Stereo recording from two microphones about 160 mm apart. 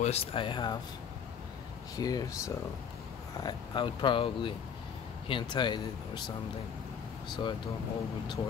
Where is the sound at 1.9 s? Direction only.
25° left (ahead or behind).